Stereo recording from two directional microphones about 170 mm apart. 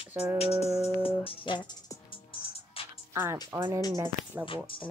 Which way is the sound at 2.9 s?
15° right (ahead or behind).